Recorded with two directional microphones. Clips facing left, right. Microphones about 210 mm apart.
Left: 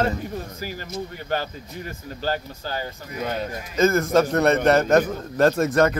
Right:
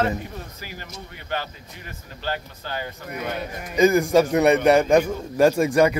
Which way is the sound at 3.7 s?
15° right (ahead or behind).